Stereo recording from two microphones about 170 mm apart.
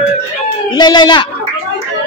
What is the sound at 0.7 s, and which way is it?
Speech, 25° left (ahead or behind).